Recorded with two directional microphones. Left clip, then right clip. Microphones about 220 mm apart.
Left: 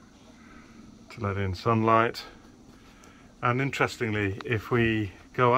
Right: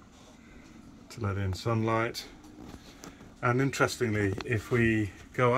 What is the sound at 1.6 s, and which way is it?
Speech, 20° left (ahead or behind).